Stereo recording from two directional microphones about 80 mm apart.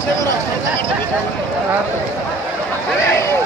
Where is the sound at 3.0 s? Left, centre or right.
Left.